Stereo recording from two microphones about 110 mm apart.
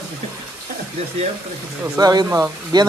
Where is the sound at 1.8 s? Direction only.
35° right (ahead or behind).